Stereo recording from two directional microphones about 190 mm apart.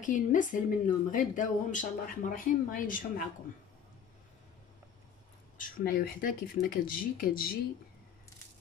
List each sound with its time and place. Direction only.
0.0 s speech: 40° left (ahead or behind)
5.6 s speech: 50° left (ahead or behind)